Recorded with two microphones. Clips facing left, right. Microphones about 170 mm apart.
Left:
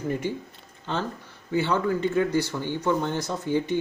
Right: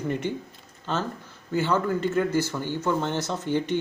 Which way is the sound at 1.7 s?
15° left (ahead or behind).